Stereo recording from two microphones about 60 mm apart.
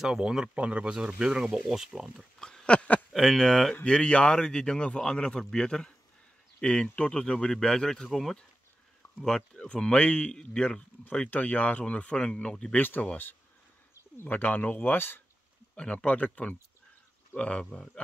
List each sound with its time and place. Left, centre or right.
0.0 s speech: centre
1.4 s speech: centre
2.3 s a sound: centre
3.1 s speech: centre
3.8 s speech: centre
9.2 s speech: centre
11.2 s speech: left
12.7 s speech: left
14.1 s speech: left
15.7 s speech: centre